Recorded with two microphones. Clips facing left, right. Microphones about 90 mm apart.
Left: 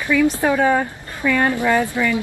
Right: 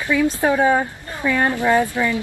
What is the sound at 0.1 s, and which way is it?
A woman's voice, 15° right (ahead or behind).